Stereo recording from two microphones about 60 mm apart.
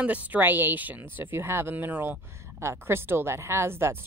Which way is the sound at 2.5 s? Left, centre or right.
Right.